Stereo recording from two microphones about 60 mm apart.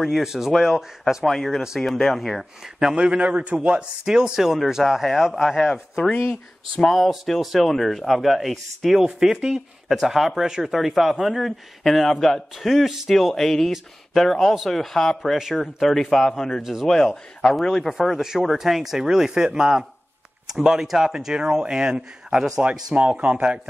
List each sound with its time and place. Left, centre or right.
0.0 s speech: centre
2.8 s a man's voice: centre
13.1 s speech: centre
17.9 s speech: centre